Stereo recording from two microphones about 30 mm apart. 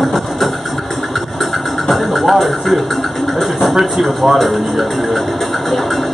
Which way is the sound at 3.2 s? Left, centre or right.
Centre.